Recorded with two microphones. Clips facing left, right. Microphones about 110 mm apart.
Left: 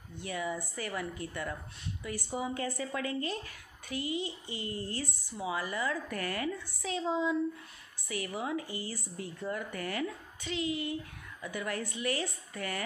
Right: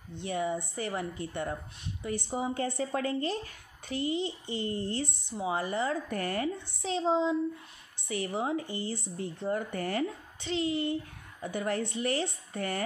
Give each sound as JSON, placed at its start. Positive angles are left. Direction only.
{"t": 0.1, "sound": "a child's voice", "side_deg": -25}